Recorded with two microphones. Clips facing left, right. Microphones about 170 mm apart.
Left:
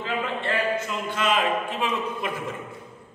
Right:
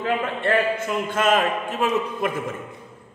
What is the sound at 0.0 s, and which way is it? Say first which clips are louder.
A man's voice: right 4 dB; 50° right (ahead or behind).